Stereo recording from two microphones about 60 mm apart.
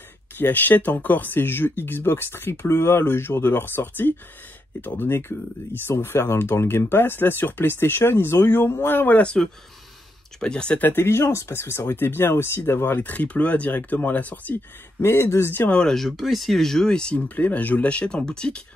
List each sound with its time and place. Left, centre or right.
0.4 s speech: left
9.2 s speech: centre
10.8 s speech: left
11.1 s speech: left
13.0 s speech: left
15.0 s speech: left
15.7 s speech: centre
16.0 s speech: centre